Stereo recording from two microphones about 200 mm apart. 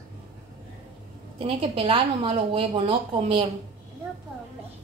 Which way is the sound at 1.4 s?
30° right (ahead or behind).